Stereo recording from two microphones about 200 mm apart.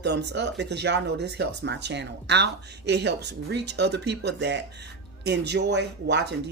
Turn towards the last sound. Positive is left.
turn(degrees=-60)  # may be behind; listen again after turning